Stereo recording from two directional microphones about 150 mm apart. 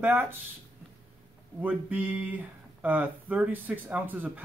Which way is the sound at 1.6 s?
10° right (ahead or behind).